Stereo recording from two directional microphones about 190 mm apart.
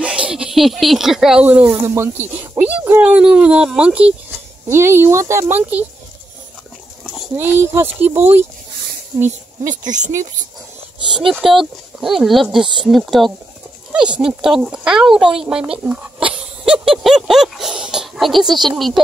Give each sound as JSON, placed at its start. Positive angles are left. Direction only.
{"t": 0.0, "sound": "speech", "side_deg": -5}
{"t": 7.3, "sound": "speech", "side_deg": -10}
{"t": 8.1, "sound": "speech", "side_deg": -35}
{"t": 9.7, "sound": "speech", "side_deg": -40}
{"t": 11.1, "sound": "speech", "side_deg": 0}